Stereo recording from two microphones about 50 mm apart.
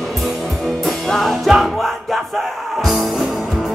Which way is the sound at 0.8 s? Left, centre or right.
Centre.